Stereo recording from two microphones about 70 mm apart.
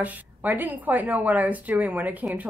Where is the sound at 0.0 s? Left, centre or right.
Right.